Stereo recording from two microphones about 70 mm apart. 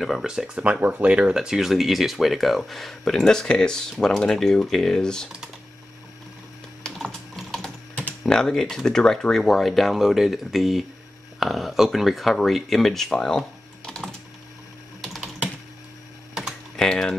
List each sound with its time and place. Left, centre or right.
0.0 s speech: centre
0.7 s speech: right; by 5.3 s centre
6.8 s typing: centre
8.3 s speech: centre
15.0 s typing: centre
16.7 s typing: centre